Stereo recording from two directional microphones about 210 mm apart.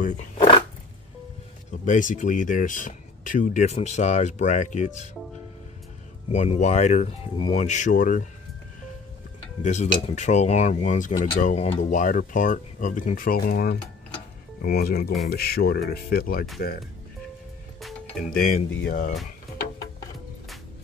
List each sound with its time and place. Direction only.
1.7 s speech: 35° left (ahead or behind)
6.2 s speech: 30° left (ahead or behind)
9.6 s speech: 35° left (ahead or behind)
17.7 s music: centre (ahead or behind)
18.3 s speech: 45° left (ahead or behind)